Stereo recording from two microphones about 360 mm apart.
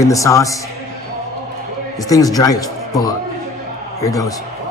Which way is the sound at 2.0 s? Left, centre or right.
Centre.